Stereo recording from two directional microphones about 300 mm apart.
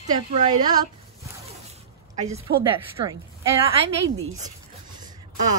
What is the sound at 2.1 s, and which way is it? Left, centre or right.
Speech, right.